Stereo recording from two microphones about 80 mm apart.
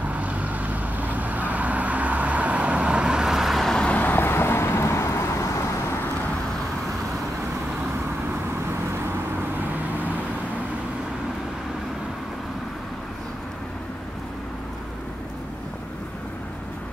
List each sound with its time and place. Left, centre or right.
0.1 s vehicle: centre
4.0 s vehicle: left